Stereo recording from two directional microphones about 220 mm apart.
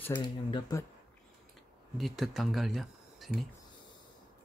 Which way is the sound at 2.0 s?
Centre (ahead or behind).